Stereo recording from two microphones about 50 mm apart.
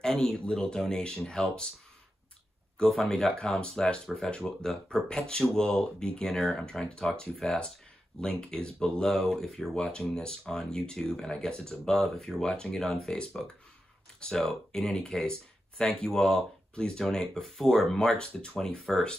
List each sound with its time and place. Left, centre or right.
0.0 s speech: centre
2.9 s speech: centre
3.3 s speech: centre